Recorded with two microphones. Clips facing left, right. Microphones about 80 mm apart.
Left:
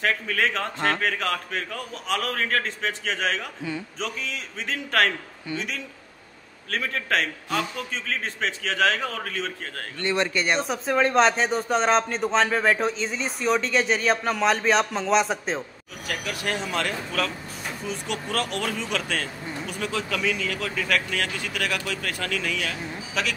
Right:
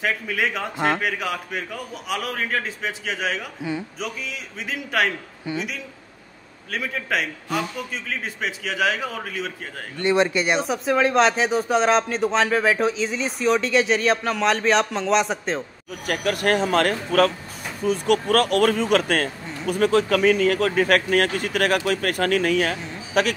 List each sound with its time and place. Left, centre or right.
0.0 s a man's voice: centre
10.6 s speech: centre
16.1 s speech: right